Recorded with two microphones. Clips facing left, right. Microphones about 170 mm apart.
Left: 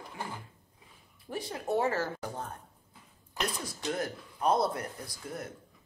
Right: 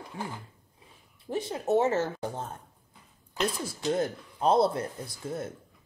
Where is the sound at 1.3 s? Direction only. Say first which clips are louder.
Right 5 dB; 25° right (ahead or behind).